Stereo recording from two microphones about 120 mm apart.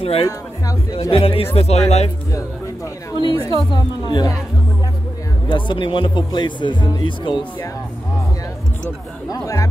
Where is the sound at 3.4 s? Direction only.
35° left (ahead or behind).